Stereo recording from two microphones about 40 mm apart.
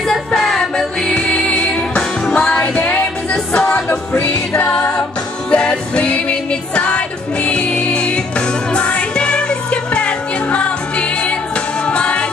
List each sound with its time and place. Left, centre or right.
0.1 s music: centre; by 4.9 s left
5.5 s music: left